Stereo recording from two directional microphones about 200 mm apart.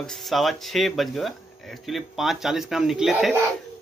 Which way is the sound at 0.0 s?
Centre (ahead or behind).